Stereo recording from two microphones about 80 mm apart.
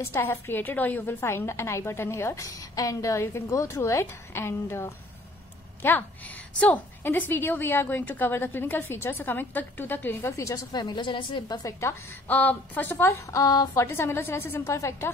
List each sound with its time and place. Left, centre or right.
0.0 s a woman's voice: left
10.3 s a woman's voice: left
10.7 s a woman's voice: left
11.6 s a woman's voice: left
12.3 s a woman's voice: left
13.3 s a woman's voice: left
13.8 s a woman's voice: left
14.8 s a woman's voice: left